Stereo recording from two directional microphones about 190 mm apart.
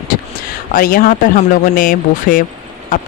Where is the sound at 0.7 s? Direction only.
50° left (ahead or behind).